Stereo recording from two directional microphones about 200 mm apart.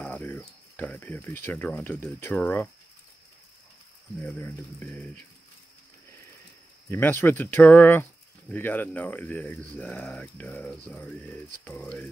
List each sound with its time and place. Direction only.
0.0 s speech: 10° left (ahead or behind)
4.2 s speech: 10° left (ahead or behind)
6.9 s speech: 10° left (ahead or behind)